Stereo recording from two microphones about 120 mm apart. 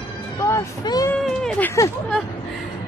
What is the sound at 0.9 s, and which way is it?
Speech, 35° left (ahead or behind).